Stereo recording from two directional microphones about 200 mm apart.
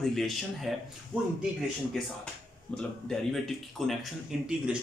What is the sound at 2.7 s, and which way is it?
Speech, centre (ahead or behind).